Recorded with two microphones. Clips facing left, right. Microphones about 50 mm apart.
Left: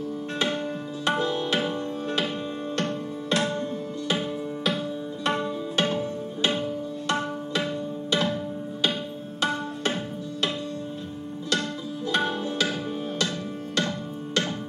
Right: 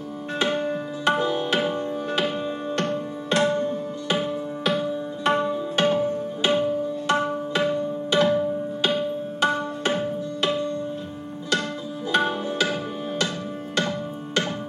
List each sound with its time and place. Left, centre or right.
0.4 s tabla: centre
12.1 s music: centre
13.7 s music: centre